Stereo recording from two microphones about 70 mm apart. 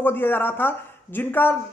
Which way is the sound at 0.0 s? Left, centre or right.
Left.